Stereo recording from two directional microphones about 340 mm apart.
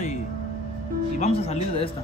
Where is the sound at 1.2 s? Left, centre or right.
Centre.